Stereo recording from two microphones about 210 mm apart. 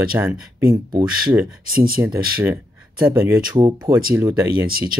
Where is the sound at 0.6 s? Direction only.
45° right (ahead or behind).